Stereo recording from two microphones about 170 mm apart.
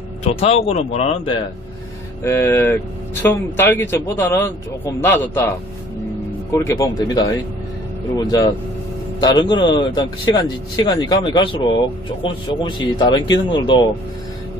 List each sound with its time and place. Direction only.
0.2 s speech: 35° left (ahead or behind)
2.2 s a man's voice: 15° left (ahead or behind)
6.5 s speech: 20° left (ahead or behind)